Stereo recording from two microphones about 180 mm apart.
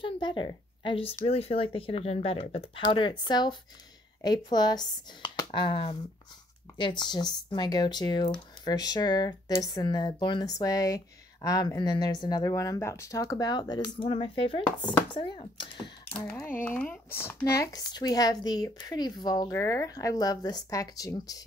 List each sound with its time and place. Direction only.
0.0 s a woman's voice: 25° left (ahead or behind)
16.2 s speech: 10° left (ahead or behind)